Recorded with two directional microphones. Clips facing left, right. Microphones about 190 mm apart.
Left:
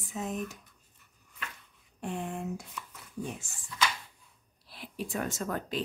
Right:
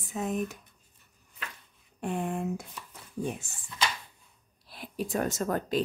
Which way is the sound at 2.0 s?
55° right (ahead or behind).